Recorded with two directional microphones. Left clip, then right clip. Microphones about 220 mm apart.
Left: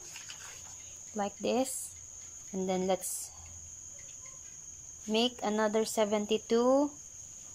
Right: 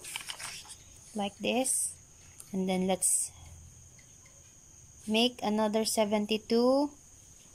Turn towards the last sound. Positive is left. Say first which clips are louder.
# even
turn(degrees=-20)  # may be behind; listen again after turning